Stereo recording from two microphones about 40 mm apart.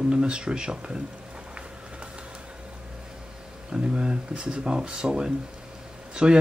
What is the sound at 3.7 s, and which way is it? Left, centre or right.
Speech, right.